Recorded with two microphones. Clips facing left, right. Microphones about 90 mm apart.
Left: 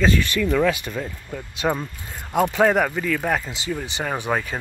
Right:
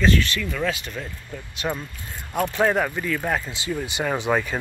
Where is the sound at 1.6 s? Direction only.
90° left.